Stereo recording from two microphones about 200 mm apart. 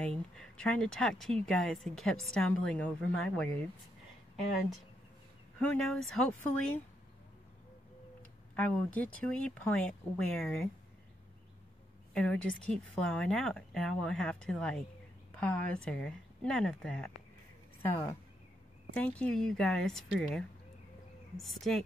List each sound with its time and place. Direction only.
0.0 s speech: 5° left (ahead or behind)
5.6 s speech: 5° left (ahead or behind)
8.5 s speech: 5° left (ahead or behind)
12.1 s speech: 5° left (ahead or behind)
17.8 s speech: 15° left (ahead or behind)